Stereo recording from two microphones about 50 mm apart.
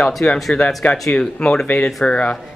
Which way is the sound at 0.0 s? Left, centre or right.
Centre.